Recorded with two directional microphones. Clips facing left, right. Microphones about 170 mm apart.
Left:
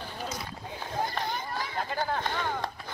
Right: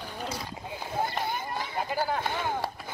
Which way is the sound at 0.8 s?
10° right (ahead or behind).